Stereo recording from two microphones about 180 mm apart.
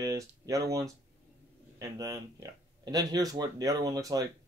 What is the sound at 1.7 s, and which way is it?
Speech, 20° right (ahead or behind).